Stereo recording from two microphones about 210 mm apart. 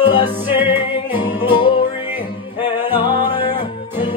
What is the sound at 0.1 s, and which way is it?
Music, 20° left (ahead or behind).